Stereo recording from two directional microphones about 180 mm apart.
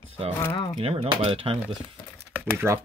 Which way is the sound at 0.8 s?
30° right (ahead or behind).